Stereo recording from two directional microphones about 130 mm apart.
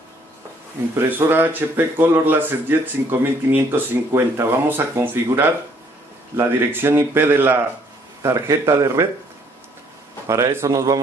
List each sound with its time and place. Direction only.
0.9 s a man's voice: 20° right (ahead or behind)
10.2 s a man's voice: 20° right (ahead or behind)